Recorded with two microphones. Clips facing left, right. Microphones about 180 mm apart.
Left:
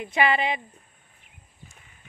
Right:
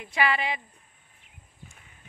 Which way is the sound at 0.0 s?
20° left (ahead or behind).